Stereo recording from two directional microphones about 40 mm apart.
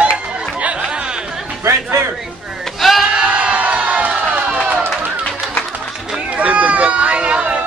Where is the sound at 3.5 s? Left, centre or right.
Right.